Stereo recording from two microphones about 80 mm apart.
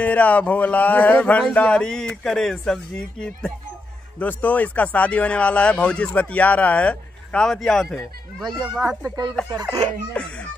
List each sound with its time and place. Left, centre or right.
0.0 s speech: centre
4.2 s speech: left; by 8.9 s centre
9.4 s speech: centre
10.1 s a sound: centre